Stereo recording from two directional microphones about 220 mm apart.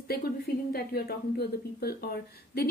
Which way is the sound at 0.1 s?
45° left (ahead or behind).